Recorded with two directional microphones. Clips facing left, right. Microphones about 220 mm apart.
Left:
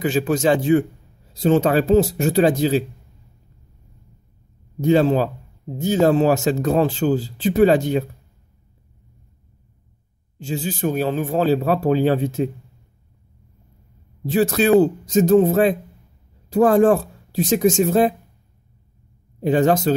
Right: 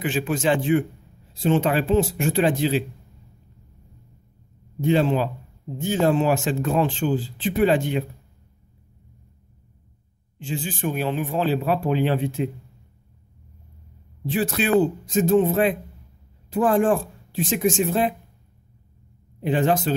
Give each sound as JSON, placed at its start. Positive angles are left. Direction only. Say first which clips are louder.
{"t": 0.0, "sound": "speech", "louder": "left 5 dB", "side_deg": 40}
{"t": 4.8, "sound": "speech", "louder": "left 4 dB", "side_deg": 40}
{"t": 10.4, "sound": "speech", "louder": "left 4 dB", "side_deg": 40}
{"t": 14.2, "sound": "speech", "louder": "left 6 dB", "side_deg": 40}
{"t": 19.4, "sound": "speech", "louder": "left 4 dB", "side_deg": 40}